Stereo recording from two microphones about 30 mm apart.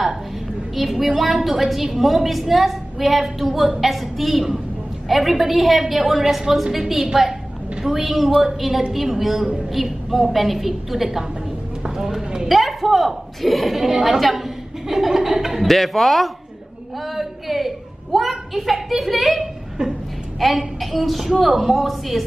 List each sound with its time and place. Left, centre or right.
0.7 s a woman's voice: centre
12.4 s a woman's voice: centre
15.7 s a woman's voice: centre
19.8 s a woman's voice: right
20.3 s a woman's voice: centre